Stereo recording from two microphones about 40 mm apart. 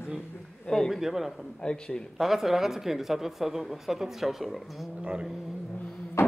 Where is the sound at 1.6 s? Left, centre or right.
Centre.